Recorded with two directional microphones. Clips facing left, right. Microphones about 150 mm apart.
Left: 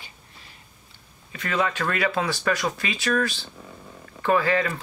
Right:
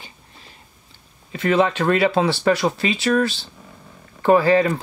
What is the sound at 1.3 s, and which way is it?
Speech, 25° right (ahead or behind).